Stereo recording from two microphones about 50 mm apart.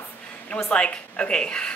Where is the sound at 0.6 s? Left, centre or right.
Left.